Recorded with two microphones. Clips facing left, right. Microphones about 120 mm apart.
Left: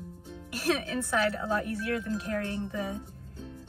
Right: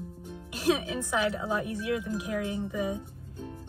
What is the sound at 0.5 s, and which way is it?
Speech, 15° right (ahead or behind).